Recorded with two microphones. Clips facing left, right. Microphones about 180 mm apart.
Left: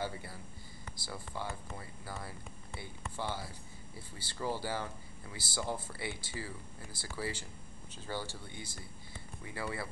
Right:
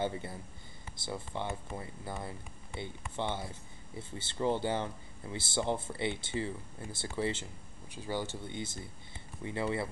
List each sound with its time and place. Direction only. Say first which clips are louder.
0.0 s speech: right 5 dB; 25° right (ahead or behind)
7.9 s speech: right 4 dB; 15° right (ahead or behind)